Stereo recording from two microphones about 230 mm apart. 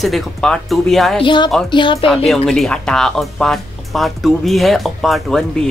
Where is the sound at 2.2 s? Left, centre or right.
Centre.